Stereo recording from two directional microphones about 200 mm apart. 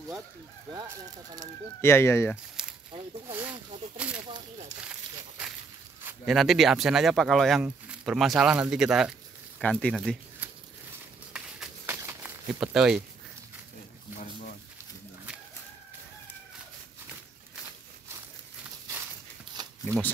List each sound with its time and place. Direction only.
0.7 s speech: 20° right (ahead or behind)
1.8 s speech: 10° left (ahead or behind)
2.6 s a sound: 5° right (ahead or behind)
3.3 s speech: 10° right (ahead or behind)
4.2 s speech: 25° right (ahead or behind)
6.2 s speech: centre (ahead or behind)
11.3 s a sound: 10° right (ahead or behind)
19.5 s shuffling cards: 20° right (ahead or behind)